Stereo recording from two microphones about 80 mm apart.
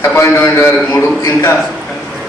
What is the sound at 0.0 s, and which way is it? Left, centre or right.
A man's voice, left.